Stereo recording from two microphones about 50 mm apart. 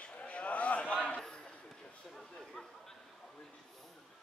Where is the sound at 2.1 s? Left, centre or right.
Centre.